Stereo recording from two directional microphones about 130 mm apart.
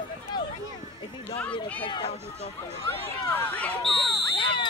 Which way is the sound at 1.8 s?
40° left (ahead or behind).